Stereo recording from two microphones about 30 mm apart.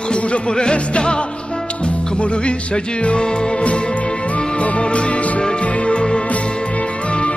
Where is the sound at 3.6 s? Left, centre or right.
Left.